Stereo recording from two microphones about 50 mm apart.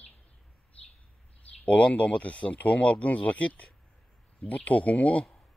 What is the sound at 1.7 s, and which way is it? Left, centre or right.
A man's voice, left.